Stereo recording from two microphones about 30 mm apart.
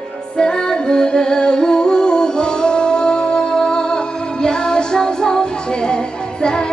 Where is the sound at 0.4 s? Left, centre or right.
Left.